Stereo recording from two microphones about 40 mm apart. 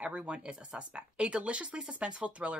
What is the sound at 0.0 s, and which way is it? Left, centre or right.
A woman's voice, right.